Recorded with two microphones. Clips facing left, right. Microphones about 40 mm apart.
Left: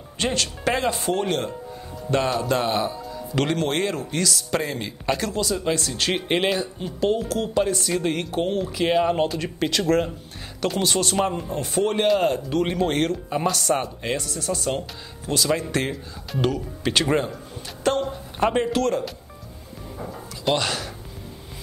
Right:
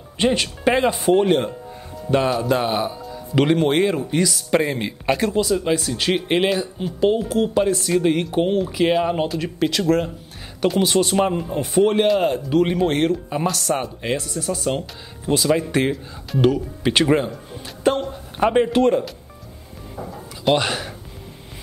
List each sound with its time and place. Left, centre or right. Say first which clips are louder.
0.2 s speech: right 5 dB; centre
7.0 s speech: right 4 dB; centre
10.8 s speech: right 4 dB; centre
20.0 s music: right 3 dB; centre
20.5 s speech: right 4 dB; centre